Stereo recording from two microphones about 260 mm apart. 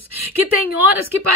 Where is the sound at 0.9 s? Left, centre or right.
Right.